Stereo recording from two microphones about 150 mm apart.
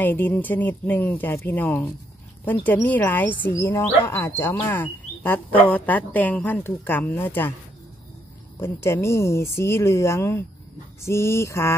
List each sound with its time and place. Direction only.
0.0 s a woman's voice: 10° left (ahead or behind)
8.5 s a woman's voice: 15° left (ahead or behind)